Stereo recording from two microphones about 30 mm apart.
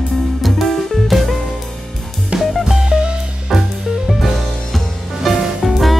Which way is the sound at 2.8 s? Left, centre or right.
Right.